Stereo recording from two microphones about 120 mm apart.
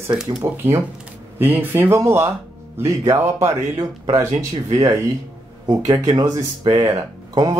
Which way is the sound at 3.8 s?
35° right (ahead or behind).